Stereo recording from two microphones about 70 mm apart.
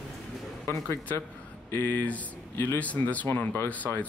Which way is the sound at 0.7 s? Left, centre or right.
Left.